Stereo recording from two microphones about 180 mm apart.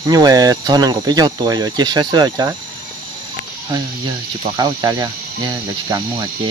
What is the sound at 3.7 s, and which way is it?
Speech, 20° right (ahead or behind).